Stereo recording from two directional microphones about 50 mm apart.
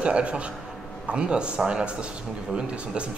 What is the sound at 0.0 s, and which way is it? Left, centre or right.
A man's voice, right.